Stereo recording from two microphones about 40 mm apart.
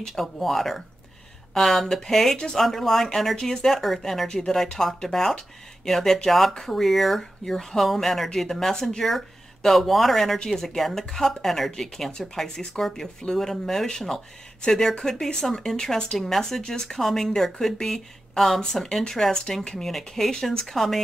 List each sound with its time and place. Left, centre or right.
0.0 s speech: centre
2.6 s speech: centre; by 19.8 s left
19.8 s speech: centre